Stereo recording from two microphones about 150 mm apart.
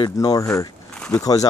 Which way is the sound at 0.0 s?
25° left (ahead or behind).